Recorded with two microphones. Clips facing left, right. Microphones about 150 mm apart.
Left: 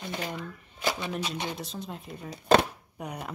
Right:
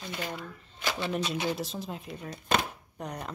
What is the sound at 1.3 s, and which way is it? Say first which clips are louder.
A woman's voice: right 3 dB; 5° right (ahead or behind).